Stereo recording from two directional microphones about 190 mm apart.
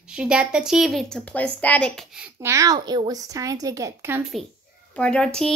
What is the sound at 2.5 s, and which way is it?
A woman's voice, 20° right (ahead or behind).